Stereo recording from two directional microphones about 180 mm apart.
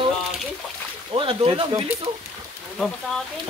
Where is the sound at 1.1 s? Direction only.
30° right (ahead or behind).